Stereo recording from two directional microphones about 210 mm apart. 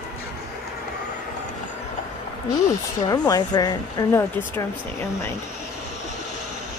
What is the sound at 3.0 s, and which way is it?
A woman's voice, 20° left (ahead or behind).